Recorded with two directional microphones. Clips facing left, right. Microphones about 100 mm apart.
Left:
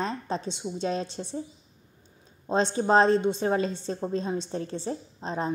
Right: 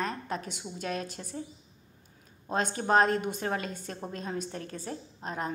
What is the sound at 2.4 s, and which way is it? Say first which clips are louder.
A woman's voice: left 5 dB; 25° left (ahead or behind).